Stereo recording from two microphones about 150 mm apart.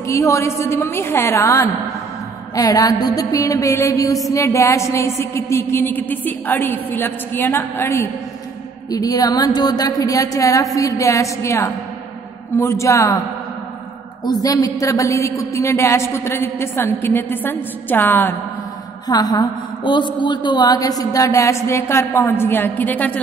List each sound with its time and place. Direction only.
0.0 s a woman's voice: 20° left (ahead or behind)
8.9 s a woman's voice: 25° left (ahead or behind)
14.2 s a woman's voice: 25° left (ahead or behind)
19.0 s a woman's voice: 25° left (ahead or behind); by 23.2 s 10° left (ahead or behind)